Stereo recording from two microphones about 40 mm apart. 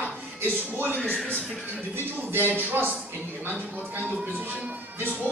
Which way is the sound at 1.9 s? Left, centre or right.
Right.